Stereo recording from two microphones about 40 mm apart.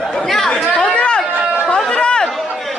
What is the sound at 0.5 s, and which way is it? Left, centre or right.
Chatter, left.